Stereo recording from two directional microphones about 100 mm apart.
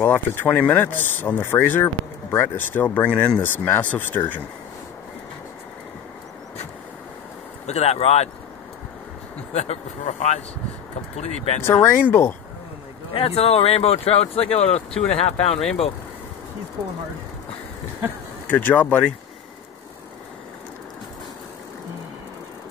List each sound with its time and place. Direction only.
0.0 s speech: 20° left (ahead or behind)
7.6 s speech: 90° left
9.5 s speech: 90° left
11.6 s speech: 25° left (ahead or behind)
13.1 s speech: 75° left (ahead or behind)
18.5 s speech: 15° left (ahead or behind)